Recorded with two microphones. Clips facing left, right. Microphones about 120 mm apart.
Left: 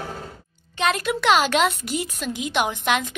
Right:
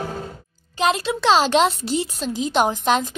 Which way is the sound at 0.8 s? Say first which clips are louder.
Right 2 dB; 25° right (ahead or behind).